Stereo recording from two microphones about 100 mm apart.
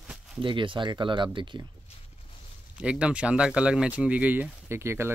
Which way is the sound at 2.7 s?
10° right (ahead or behind).